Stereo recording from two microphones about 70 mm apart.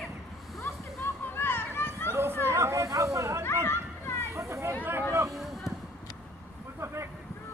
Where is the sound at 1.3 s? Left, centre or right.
Left.